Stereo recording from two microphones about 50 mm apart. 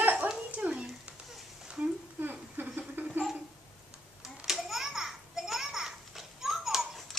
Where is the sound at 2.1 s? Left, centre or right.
Right.